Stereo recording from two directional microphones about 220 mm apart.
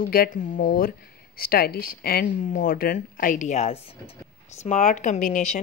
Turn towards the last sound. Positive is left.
turn(degrees=35)  # may be behind; listen again after turning